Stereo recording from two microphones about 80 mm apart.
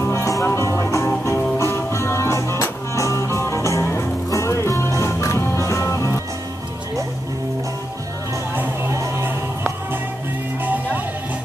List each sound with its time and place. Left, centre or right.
0.0 s music: left
8.9 s music: right
10.6 s music: right